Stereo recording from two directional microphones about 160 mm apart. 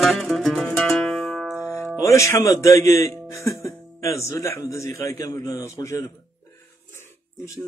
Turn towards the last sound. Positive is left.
turn(degrees=15)  # may be behind; listen again after turning